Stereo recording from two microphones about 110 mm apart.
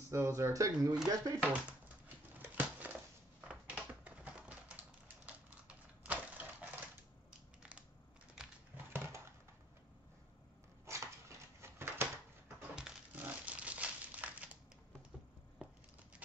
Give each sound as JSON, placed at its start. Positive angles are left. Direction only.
{"t": 0.1, "sound": "speech", "side_deg": -25}
{"t": 2.3, "sound": "a sound", "side_deg": -15}
{"t": 3.3, "sound": "typewriter", "side_deg": -10}
{"t": 8.4, "sound": "a sound", "side_deg": -5}
{"t": 8.9, "sound": "dog", "side_deg": -25}
{"t": 10.9, "sound": "dog", "side_deg": -25}
{"t": 12.7, "sound": "crushing", "side_deg": -5}
{"t": 13.2, "sound": "crumpling", "side_deg": -15}